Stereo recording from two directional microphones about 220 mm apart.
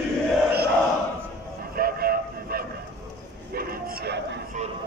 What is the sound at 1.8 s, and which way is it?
Train, 40° right (ahead or behind).